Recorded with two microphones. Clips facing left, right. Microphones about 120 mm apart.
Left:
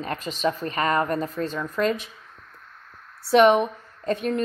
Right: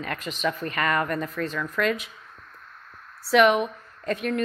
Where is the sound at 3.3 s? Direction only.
30° left (ahead or behind).